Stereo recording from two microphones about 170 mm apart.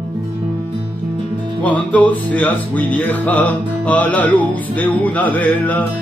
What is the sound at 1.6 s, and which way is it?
Music, 10° left (ahead or behind).